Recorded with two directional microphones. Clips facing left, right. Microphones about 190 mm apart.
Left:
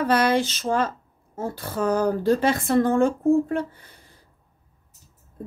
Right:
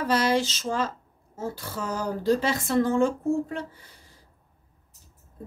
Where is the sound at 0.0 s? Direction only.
55° left (ahead or behind).